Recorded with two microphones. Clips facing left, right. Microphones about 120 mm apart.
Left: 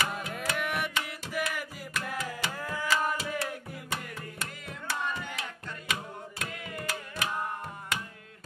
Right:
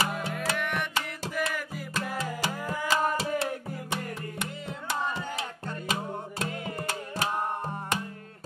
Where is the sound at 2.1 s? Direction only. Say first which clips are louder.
Right 3 dB; 35° right (ahead or behind).